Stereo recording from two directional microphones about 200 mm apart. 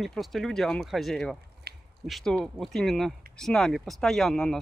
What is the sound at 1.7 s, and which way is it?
Biting, 55° right (ahead or behind).